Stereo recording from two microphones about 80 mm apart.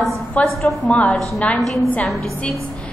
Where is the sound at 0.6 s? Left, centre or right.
Centre.